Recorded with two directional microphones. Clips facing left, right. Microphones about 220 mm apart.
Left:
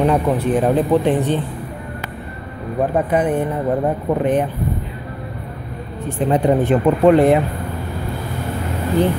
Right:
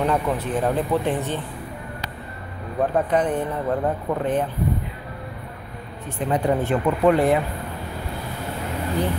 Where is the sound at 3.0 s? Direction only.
10° left (ahead or behind).